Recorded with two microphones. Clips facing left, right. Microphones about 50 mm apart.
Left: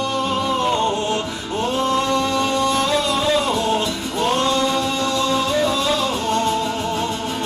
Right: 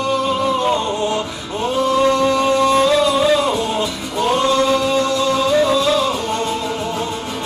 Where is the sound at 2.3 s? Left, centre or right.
Right.